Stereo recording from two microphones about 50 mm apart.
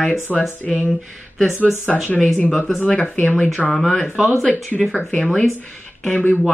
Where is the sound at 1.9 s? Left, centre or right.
Centre.